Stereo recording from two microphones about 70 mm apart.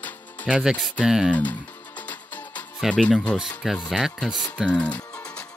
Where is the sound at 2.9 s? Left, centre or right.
Centre.